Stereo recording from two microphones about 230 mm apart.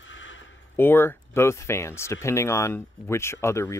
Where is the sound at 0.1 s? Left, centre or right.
Left.